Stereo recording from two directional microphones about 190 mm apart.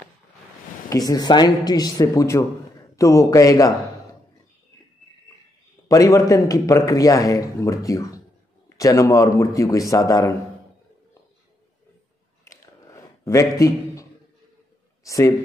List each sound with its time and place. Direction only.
0.8 s a man's voice: 20° left (ahead or behind)
5.9 s a man's voice: 15° left (ahead or behind)
12.4 s a sound: 15° left (ahead or behind)
15.0 s a man's voice: 15° left (ahead or behind)